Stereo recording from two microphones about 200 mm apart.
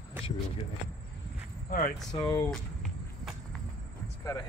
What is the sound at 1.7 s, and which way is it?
Speech, 45° left (ahead or behind).